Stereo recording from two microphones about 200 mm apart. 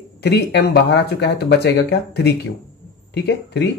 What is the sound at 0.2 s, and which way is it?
Speech, 60° left (ahead or behind).